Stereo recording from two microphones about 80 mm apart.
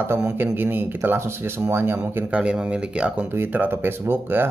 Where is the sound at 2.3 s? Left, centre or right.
Centre.